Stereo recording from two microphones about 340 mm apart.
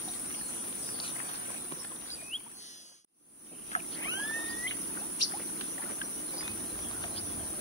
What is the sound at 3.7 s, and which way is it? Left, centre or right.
Boat, centre.